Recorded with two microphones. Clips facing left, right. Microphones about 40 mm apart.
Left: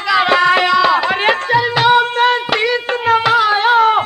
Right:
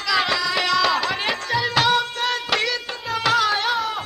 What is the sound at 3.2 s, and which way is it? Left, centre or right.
Music, left.